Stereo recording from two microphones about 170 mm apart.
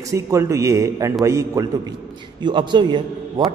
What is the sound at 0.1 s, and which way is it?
Speech, 20° right (ahead or behind).